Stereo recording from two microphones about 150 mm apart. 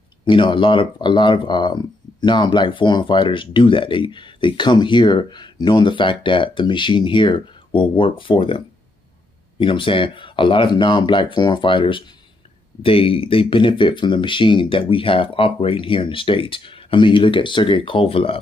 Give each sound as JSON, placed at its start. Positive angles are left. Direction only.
{"t": 0.2, "sound": "speech", "side_deg": 35}